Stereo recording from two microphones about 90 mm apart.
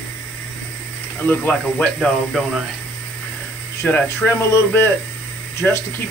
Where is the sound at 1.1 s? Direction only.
15° left (ahead or behind).